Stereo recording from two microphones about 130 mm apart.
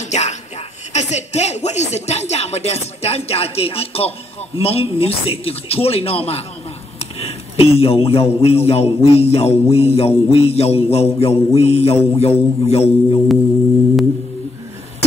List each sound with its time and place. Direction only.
0.0 s music: 60° left (ahead or behind)
0.9 s speech: 60° left (ahead or behind)